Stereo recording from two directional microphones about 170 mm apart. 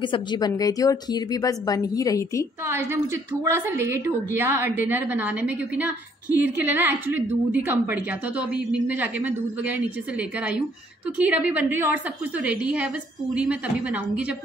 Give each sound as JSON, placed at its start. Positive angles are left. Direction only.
{"t": 0.0, "sound": "a woman's voice", "side_deg": 25}
{"t": 2.6, "sound": "a woman's voice", "side_deg": -15}